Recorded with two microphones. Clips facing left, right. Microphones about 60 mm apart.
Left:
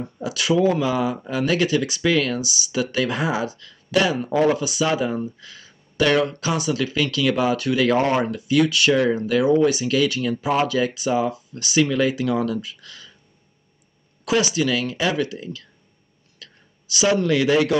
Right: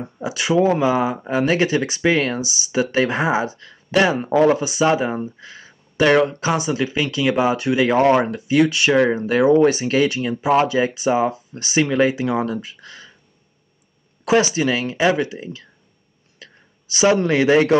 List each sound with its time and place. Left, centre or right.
0.0 s speech: right
14.2 s speech: right
16.3 s a sound: right